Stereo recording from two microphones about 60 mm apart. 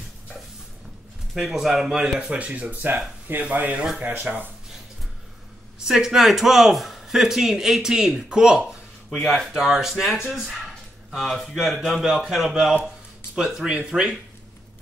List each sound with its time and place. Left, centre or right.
1.3 s a man's voice: centre
2.1 s speech: centre
5.9 s a man's voice: centre
12.8 s a sound: centre
13.7 s a man's voice: centre